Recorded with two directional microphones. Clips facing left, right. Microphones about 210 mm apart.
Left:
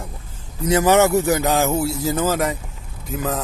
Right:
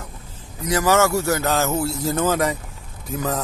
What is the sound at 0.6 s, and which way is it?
Speech, 20° left (ahead or behind).